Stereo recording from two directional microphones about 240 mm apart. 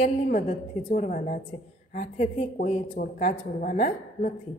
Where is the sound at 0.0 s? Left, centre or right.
Left.